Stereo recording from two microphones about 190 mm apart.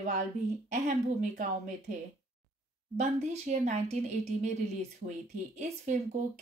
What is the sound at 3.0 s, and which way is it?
Speech, 35° right (ahead or behind).